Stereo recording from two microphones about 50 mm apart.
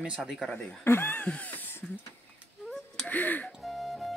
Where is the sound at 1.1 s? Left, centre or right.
Left.